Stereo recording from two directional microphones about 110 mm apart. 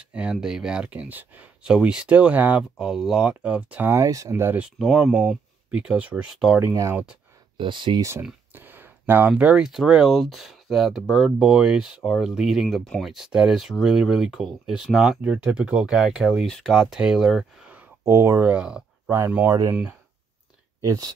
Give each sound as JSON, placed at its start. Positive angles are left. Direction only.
{"t": 0.0, "sound": "speech", "side_deg": -10}
{"t": 3.9, "sound": "speech", "side_deg": -30}
{"t": 4.6, "sound": "speech", "side_deg": -5}
{"t": 6.6, "sound": "speech", "side_deg": -25}
{"t": 7.5, "sound": "speech", "side_deg": -45}
{"t": 8.2, "sound": "a sound", "side_deg": -15}
{"t": 9.3, "sound": "speech", "side_deg": -10}
{"t": 18.0, "sound": "speech", "side_deg": -20}
{"t": 18.5, "sound": "speech", "side_deg": -10}
{"t": 19.4, "sound": "speech", "side_deg": -30}
{"t": 19.7, "sound": "speech", "side_deg": -15}
{"t": 20.8, "sound": "speech", "side_deg": -35}